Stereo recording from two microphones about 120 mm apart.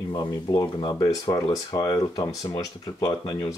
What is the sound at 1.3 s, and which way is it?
Speech, 30° left (ahead or behind).